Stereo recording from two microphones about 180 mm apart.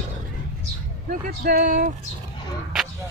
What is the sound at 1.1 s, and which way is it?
Speech, 55° right (ahead or behind).